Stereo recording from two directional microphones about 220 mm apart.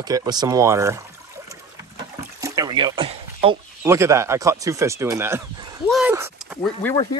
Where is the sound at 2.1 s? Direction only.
15° right (ahead or behind).